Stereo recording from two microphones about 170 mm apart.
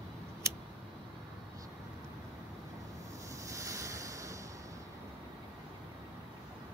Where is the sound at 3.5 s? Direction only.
20° right (ahead or behind).